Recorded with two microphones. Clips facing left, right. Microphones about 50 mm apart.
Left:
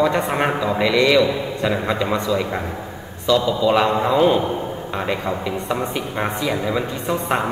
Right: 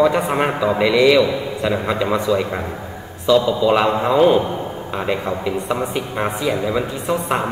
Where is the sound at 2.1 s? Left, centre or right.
Centre.